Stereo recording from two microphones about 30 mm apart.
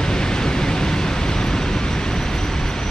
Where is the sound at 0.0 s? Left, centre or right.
Left.